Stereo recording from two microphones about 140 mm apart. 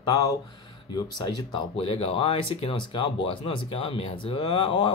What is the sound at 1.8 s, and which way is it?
Speech, 45° left (ahead or behind).